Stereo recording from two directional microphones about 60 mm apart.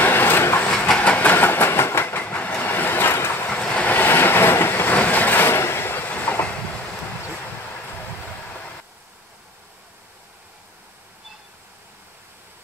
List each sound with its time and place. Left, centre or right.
0.0 s train: left
0.6 s train: left
2.2 s vehicle: centre
2.6 s vehicle: left
3.4 s vehicle: centre
3.9 s vehicle: left
4.9 s train: left